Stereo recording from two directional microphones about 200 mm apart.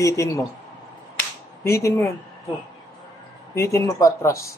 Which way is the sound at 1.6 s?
15° left (ahead or behind).